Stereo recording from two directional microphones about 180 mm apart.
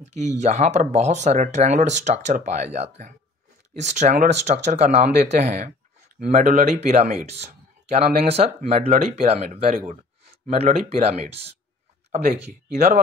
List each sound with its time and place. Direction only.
0.0 s speech: 40° right (ahead or behind)
6.1 s speech: 50° right (ahead or behind)